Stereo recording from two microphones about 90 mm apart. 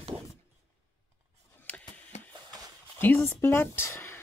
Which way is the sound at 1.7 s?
15° left (ahead or behind).